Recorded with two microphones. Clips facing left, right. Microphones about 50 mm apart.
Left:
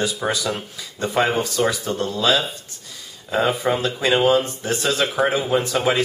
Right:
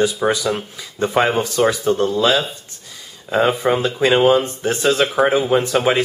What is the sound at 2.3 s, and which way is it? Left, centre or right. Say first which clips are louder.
Speech: right 2 dB; centre.